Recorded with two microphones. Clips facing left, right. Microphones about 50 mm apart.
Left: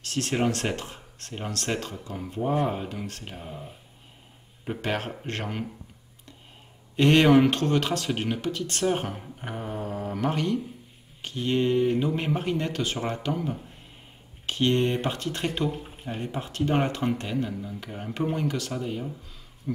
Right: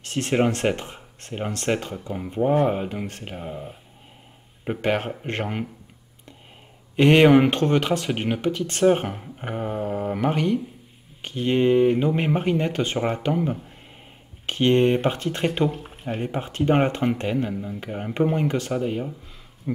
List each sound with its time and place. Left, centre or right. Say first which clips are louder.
0.0 s speech: right 4 dB; right
7.0 s speech: right 4 dB; right